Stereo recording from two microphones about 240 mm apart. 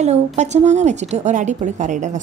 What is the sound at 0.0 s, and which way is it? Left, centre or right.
A woman's voice, right.